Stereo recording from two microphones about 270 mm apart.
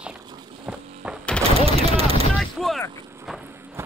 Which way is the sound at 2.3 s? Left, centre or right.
Centre.